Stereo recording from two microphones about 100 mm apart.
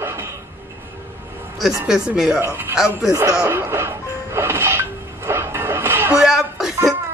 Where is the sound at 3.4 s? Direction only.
25° right (ahead or behind).